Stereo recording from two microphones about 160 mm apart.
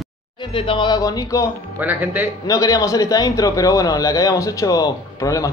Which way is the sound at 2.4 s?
20° left (ahead or behind).